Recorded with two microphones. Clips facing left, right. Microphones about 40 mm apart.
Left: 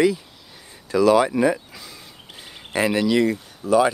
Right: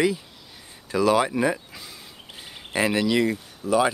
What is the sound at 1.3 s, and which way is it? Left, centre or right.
Speech, centre.